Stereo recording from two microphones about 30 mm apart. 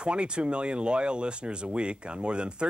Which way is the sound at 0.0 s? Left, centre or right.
Right.